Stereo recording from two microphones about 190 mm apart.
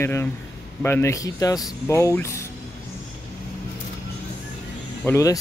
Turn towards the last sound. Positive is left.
turn(degrees=15)  # may be behind; listen again after turning